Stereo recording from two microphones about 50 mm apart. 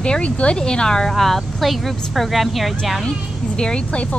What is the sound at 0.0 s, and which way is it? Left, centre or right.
Speech, left.